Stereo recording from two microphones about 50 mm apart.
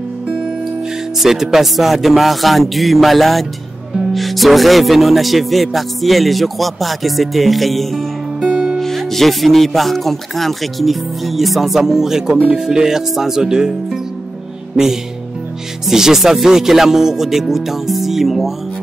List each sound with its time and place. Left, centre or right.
1.2 s speech: centre
8.5 s music: centre
8.7 s speech: centre
15.9 s speech: centre